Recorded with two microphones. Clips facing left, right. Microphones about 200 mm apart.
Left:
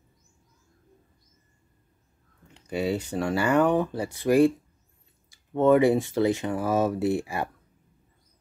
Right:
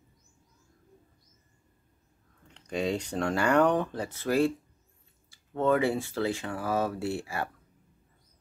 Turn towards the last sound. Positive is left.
turn(degrees=15)  # may be behind; listen again after turning